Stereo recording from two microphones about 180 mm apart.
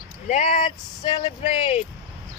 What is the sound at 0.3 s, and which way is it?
Speech, 35° left (ahead or behind).